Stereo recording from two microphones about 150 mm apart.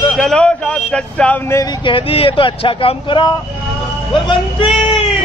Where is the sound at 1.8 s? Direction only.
35° left (ahead or behind).